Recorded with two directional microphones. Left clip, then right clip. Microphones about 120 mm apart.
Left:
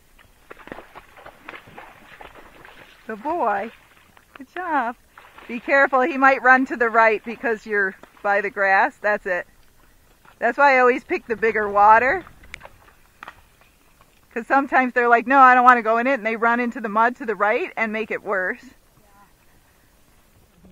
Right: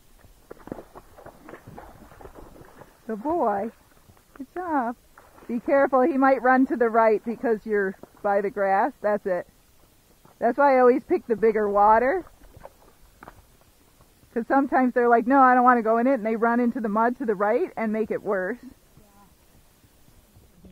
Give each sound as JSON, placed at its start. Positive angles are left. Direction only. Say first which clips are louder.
{"t": 0.5, "sound": "a sound", "louder": "left 1 dB", "side_deg": 35}
{"t": 1.8, "sound": "a sound", "louder": "left 4 dB", "side_deg": 30}
{"t": 3.1, "sound": "speech", "louder": "left 2 dB", "side_deg": 30}
{"t": 4.3, "sound": "speech", "louder": "right 1 dB", "side_deg": 55}
{"t": 4.6, "sound": "speech", "louder": "left 4 dB", "side_deg": 35}
{"t": 14.3, "sound": "speech", "louder": "left 4 dB", "side_deg": 30}